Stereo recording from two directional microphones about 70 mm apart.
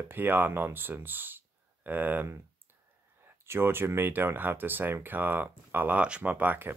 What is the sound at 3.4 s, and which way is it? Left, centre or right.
Speech, right.